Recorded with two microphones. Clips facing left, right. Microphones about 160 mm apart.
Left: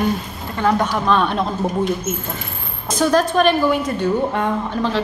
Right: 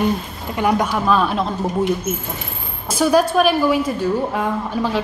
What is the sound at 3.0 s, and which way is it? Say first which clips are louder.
A woman's voice: right 1 dB; 10° right (ahead or behind).